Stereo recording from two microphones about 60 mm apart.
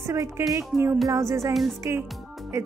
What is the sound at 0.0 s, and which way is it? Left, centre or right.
A woman's voice, right.